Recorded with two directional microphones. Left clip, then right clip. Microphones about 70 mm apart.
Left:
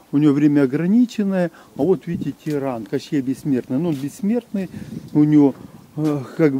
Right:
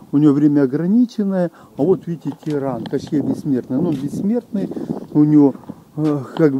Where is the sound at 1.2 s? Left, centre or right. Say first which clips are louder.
Right 1 dB; left.